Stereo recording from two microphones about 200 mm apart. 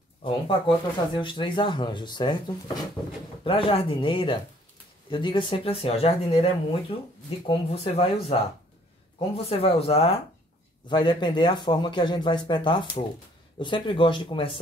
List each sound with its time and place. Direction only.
0.2 s speech: 25° left (ahead or behind)
9.5 s speech: 30° left (ahead or behind)